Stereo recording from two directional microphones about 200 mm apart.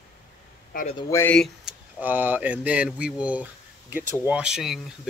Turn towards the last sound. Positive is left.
turn(degrees=0)  # may be behind; listen again after turning